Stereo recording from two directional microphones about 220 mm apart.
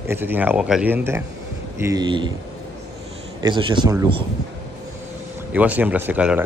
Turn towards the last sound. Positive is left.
turn(degrees=-5)  # may be behind; listen again after turning